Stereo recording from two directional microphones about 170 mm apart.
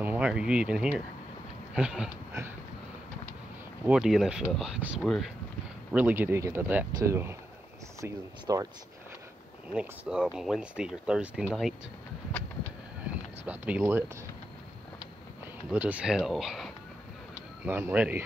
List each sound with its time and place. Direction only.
0.0 s speech: 10° right (ahead or behind)
3.8 s speech: 5° right (ahead or behind); by 8.6 s 20° right (ahead or behind)
9.7 s speech: 5° right (ahead or behind)
13.0 s clip-clop: 10° right (ahead or behind)
15.7 s speech: 10° right (ahead or behind)
17.6 s speech: 15° right (ahead or behind)